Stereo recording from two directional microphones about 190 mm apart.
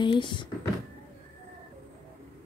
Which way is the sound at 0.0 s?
25° left (ahead or behind).